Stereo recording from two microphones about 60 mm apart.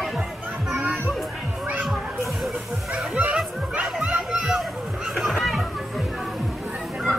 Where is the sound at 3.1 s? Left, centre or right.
Right.